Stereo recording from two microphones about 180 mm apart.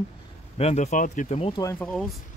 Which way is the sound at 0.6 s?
40° left (ahead or behind).